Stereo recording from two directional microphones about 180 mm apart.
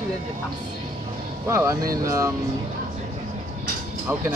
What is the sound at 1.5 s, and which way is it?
Speech, 15° right (ahead or behind).